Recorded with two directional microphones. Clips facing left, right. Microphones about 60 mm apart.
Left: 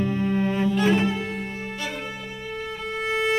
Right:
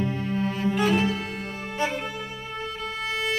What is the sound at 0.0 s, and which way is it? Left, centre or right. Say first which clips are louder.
Music: left 3 dB; left.